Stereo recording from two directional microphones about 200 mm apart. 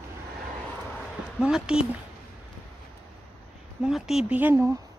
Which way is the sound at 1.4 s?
5° right (ahead or behind).